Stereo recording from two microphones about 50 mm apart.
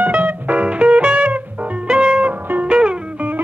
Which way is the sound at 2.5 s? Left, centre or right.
Right.